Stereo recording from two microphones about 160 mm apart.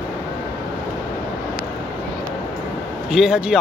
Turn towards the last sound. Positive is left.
turn(degrees=-5)  # may be behind; listen again after turning